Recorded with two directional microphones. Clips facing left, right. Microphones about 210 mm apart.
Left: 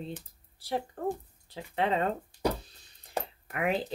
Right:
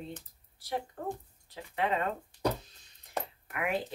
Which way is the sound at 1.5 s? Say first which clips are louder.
Left 3 dB; 30° left (ahead or behind).